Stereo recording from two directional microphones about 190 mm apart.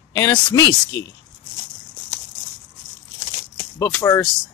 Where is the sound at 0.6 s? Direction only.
65° left (ahead or behind).